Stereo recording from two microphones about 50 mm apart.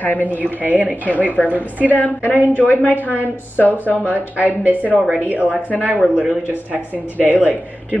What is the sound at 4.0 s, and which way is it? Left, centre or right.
A woman's voice, right.